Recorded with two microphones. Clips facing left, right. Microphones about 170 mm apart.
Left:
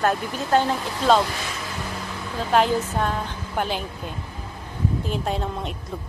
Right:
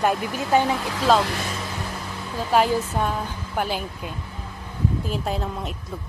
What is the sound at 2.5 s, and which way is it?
A woman's voice, 5° right (ahead or behind).